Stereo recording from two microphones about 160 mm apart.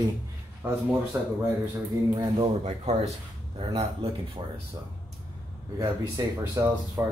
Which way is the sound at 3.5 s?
40° right (ahead or behind).